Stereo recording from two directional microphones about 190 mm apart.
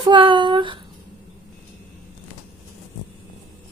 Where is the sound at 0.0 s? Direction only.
25° right (ahead or behind).